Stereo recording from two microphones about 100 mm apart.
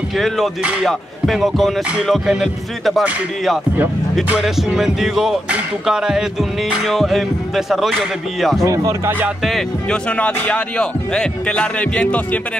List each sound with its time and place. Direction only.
0.8 s speech: centre (ahead or behind)
4.4 s speech: 5° right (ahead or behind)
8.6 s speech: 30° right (ahead or behind)
9.4 s speech: centre (ahead or behind)